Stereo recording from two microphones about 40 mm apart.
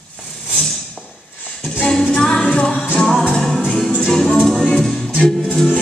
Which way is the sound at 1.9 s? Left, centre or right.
Centre.